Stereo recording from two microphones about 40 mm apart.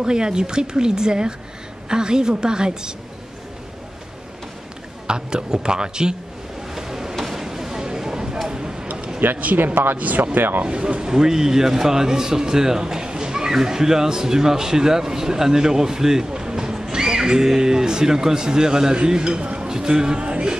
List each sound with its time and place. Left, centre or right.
0.0 s speech: centre
5.0 s speech: right
6.7 s a sound: centre
8.5 s tick-tock: centre
8.9 s a sound: centre
9.9 s speech: right
10.6 s a man's voice: right
19.4 s a sound: right
19.7 s a man's voice: centre
20.2 s music: right